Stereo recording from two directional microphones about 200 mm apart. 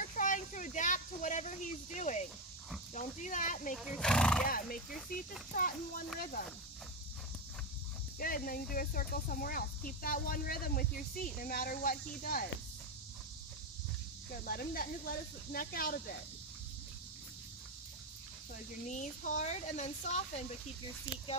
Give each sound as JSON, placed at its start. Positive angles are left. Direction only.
{"t": 0.1, "sound": "a sound", "side_deg": 40}
{"t": 2.0, "sound": "speech", "side_deg": 35}
{"t": 3.7, "sound": "speech", "side_deg": 0}
{"t": 4.5, "sound": "speech", "side_deg": 45}
{"t": 8.2, "sound": "speech", "side_deg": 45}
{"t": 14.3, "sound": "speech", "side_deg": 45}
{"t": 18.9, "sound": "speech", "side_deg": 40}